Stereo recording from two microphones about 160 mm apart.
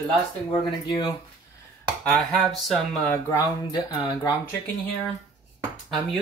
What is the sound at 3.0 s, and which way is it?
Speech, 20° left (ahead or behind).